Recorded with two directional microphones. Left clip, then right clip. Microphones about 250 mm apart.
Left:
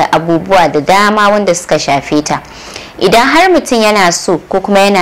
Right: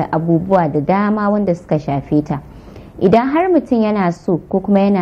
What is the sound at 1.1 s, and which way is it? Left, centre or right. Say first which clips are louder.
Speech: left 9 dB; left.